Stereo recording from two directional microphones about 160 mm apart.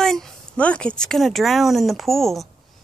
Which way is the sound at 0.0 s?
5° left (ahead or behind).